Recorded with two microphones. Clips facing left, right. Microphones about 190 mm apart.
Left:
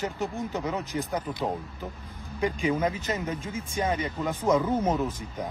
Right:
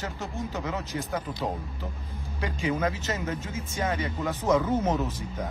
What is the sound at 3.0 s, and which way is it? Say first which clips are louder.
Speech: left 1 dB; 15° left (ahead or behind).